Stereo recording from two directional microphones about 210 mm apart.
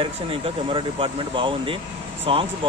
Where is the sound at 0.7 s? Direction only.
25° right (ahead or behind).